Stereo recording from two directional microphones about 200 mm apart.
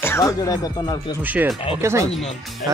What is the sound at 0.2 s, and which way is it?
Speech, 20° left (ahead or behind).